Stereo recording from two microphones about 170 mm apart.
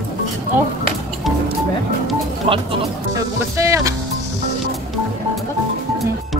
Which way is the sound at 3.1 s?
15° right (ahead or behind).